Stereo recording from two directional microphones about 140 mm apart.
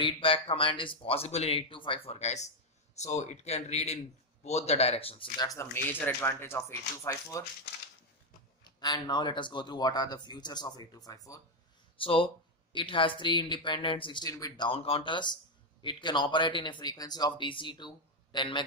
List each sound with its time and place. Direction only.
0.0 s a man's voice: 40° left (ahead or behind)
5.4 s speech: 20° left (ahead or behind)
8.7 s speech: 30° left (ahead or behind)
12.0 s speech: 40° left (ahead or behind)
14.7 s speech: 45° left (ahead or behind)